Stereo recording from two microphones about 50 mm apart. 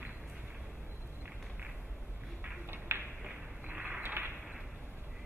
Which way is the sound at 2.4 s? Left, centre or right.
Right.